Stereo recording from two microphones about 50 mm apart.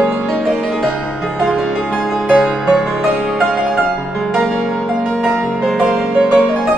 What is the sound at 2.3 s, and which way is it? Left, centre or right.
Music, centre.